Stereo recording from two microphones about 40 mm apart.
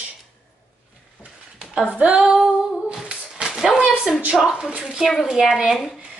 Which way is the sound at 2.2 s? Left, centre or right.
Centre.